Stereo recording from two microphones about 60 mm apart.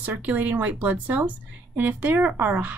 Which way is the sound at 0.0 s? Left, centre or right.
Right.